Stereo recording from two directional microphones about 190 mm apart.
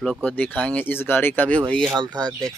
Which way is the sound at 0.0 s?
Centre (ahead or behind).